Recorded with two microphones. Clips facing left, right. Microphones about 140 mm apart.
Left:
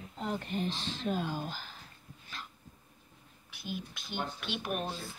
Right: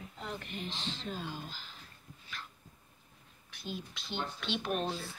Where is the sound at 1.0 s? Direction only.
55° left (ahead or behind).